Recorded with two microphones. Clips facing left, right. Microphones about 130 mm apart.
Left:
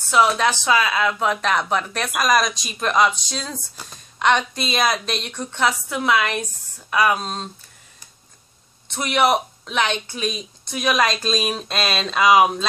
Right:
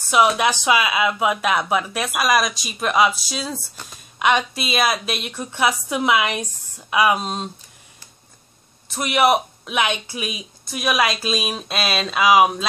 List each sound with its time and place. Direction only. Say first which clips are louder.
0.4 s speech: even; 15° right (ahead or behind)
8.8 s speech: right 1 dB; 5° right (ahead or behind)